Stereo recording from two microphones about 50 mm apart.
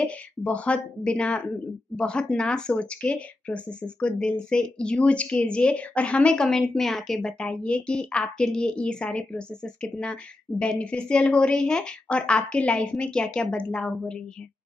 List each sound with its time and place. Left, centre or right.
0.0 s speech: left; by 7.2 s centre
7.2 s speech: left